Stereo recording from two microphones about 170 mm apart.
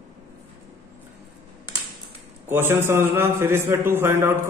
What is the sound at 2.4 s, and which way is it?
A man's voice, 15° right (ahead or behind).